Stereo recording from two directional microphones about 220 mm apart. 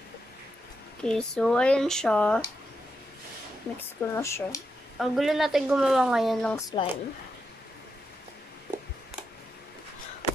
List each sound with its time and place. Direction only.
1.0 s speech: 5° left (ahead or behind)
3.7 s speech: 10° left (ahead or behind)
4.9 s speech: centre (ahead or behind)
6.5 s speech: 20° left (ahead or behind)